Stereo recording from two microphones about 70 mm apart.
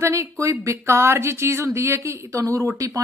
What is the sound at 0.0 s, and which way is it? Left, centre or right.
A woman's voice, right.